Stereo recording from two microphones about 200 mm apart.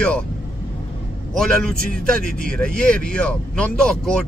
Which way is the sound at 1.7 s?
45° right (ahead or behind).